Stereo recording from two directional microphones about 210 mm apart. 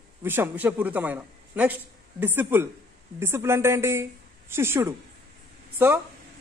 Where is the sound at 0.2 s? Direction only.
10° right (ahead or behind).